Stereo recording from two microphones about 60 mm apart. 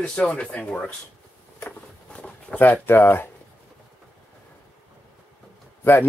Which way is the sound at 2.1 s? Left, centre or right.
Centre.